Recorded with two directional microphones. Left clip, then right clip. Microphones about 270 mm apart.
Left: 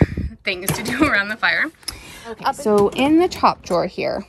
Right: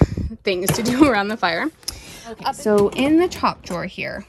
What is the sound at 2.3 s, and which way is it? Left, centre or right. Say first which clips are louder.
Speech: left 3 dB; centre.